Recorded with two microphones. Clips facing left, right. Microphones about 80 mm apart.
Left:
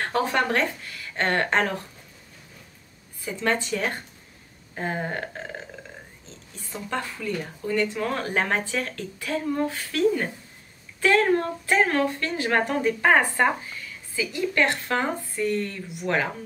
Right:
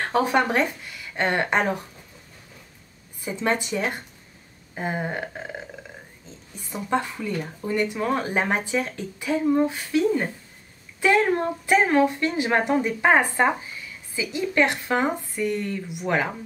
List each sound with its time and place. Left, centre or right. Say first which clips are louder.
0.0 s speech: right 3 dB; centre
3.2 s speech: right 1 dB; right